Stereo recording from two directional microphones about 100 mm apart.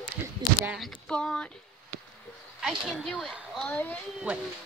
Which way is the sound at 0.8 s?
5° left (ahead or behind).